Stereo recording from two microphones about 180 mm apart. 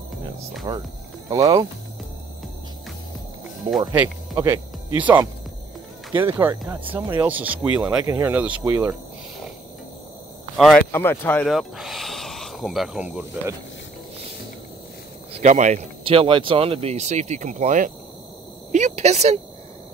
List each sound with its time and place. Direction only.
0.7 s speech: 20° right (ahead or behind)
3.9 s speech: 10° right (ahead or behind)
10.9 s speech: 10° left (ahead or behind)
11.4 s speech: centre (ahead or behind)
15.3 s speech: 40° right (ahead or behind)